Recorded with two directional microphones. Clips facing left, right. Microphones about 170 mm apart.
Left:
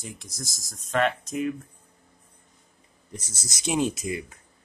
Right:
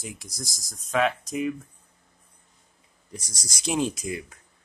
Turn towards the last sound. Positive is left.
turn(degrees=5)  # may be behind; listen again after turning